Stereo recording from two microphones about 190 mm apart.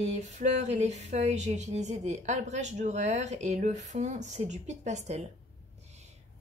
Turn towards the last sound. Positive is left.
turn(degrees=-35)  # may be behind; listen again after turning